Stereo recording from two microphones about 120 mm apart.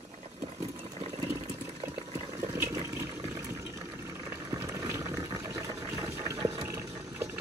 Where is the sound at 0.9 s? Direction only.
60° right (ahead or behind).